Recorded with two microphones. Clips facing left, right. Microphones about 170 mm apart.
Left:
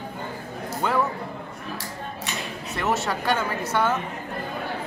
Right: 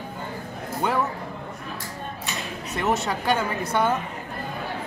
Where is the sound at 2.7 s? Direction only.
15° right (ahead or behind).